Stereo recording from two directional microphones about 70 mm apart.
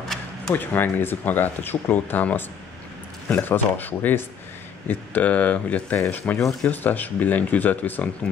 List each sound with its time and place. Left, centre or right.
0.7 s speech: left